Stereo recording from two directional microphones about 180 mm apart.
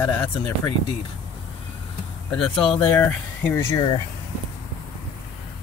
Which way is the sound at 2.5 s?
30° left (ahead or behind).